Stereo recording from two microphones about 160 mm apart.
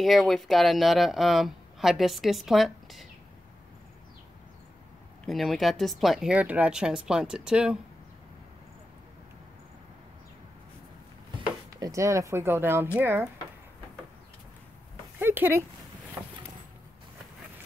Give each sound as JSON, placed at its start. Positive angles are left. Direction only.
{"t": 0.0, "sound": "speech", "side_deg": 0}
{"t": 5.2, "sound": "speech", "side_deg": 0}
{"t": 11.7, "sound": "speech", "side_deg": -20}
{"t": 15.1, "sound": "speech", "side_deg": -10}